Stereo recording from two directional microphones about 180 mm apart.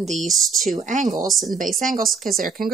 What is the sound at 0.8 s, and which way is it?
Speech, 45° right (ahead or behind).